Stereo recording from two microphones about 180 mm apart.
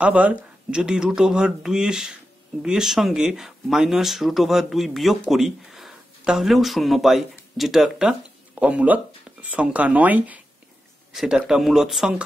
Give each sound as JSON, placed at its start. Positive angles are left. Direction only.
{"t": 0.0, "sound": "speech", "side_deg": -5}